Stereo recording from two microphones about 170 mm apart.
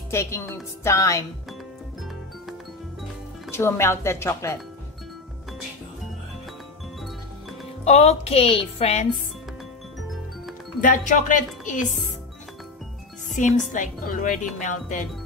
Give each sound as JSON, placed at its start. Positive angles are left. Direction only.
{"t": 0.1, "sound": "a woman's voice", "side_deg": 15}
{"t": 3.5, "sound": "speech", "side_deg": 15}
{"t": 7.8, "sound": "speech", "side_deg": 40}
{"t": 10.8, "sound": "speech", "side_deg": 50}
{"t": 13.7, "sound": "speech", "side_deg": 50}